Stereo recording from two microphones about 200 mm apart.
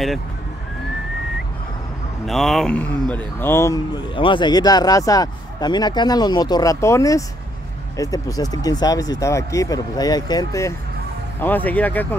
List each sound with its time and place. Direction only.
2.2 s speech: centre (ahead or behind)